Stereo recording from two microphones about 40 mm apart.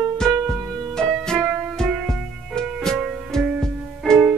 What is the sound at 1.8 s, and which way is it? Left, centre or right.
Music, centre.